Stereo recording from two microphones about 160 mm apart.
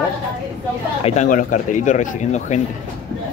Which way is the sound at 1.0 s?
50° left (ahead or behind).